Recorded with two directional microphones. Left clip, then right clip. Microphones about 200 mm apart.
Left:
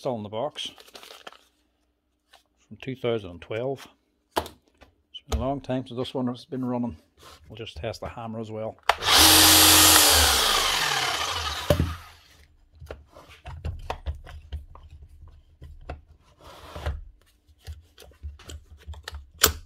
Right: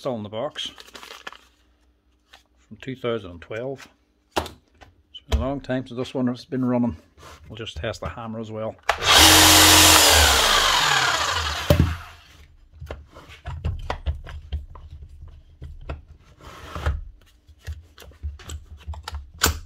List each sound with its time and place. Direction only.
0.0 s speech: 20° left (ahead or behind)
0.7 s crumpling: 5° left (ahead or behind)
2.7 s a sound: 25° left (ahead or behind)
5.1 s speech: 20° left (ahead or behind)
6.1 s speech: centre (ahead or behind)
7.4 s speech: 5° left (ahead or behind)
8.6 s a sound: 10° left (ahead or behind)
14.0 s chopping: 10° left (ahead or behind)
17.6 s a sound: 10° left (ahead or behind)
18.5 s typing: 10° left (ahead or behind)